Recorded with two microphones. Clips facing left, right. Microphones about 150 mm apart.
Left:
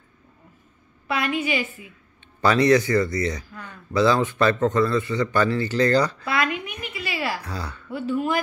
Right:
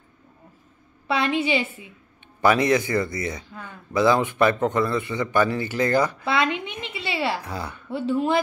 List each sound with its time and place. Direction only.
1.0 s a woman's voice: 30° right (ahead or behind)
2.4 s speech: 15° right (ahead or behind)